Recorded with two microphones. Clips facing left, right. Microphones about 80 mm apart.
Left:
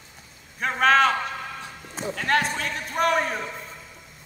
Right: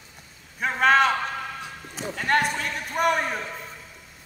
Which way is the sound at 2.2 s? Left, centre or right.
Centre.